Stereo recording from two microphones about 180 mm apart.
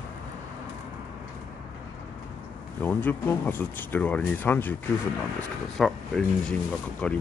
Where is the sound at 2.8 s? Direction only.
10° left (ahead or behind).